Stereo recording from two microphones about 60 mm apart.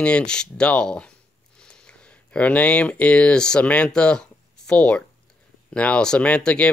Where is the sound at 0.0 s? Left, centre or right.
Centre.